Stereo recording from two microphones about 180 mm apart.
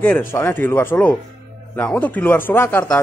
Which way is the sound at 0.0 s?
10° left (ahead or behind).